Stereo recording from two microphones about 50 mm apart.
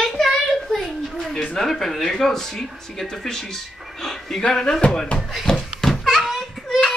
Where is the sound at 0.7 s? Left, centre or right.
Centre.